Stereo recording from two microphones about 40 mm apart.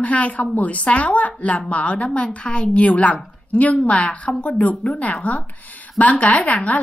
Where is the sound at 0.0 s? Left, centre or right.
Left.